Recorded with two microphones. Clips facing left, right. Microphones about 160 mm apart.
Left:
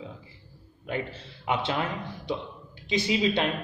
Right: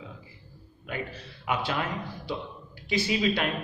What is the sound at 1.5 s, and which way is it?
A man's voice, 25° left (ahead or behind).